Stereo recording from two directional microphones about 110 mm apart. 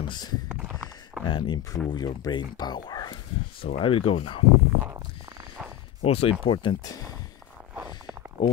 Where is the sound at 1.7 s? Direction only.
35° left (ahead or behind).